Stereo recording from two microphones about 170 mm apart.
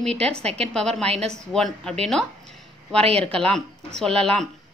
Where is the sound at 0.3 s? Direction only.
35° right (ahead or behind).